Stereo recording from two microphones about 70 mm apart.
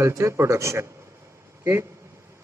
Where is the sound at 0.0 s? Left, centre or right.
Right.